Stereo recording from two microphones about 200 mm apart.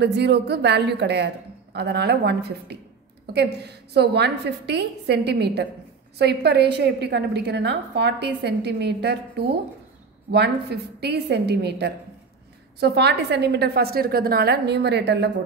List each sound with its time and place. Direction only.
0.0 s a woman's voice: 55° right (ahead or behind)